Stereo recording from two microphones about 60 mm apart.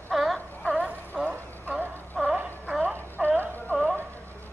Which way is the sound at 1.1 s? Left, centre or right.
Centre.